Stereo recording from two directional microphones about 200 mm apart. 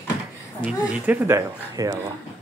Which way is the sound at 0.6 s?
5° right (ahead or behind).